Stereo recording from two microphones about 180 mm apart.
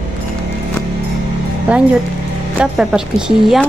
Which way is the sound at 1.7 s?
10° right (ahead or behind).